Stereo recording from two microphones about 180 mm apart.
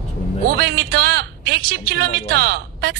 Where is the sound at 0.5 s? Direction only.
55° right (ahead or behind).